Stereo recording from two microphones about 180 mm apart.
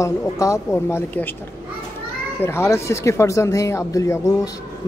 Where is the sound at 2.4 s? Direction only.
15° left (ahead or behind).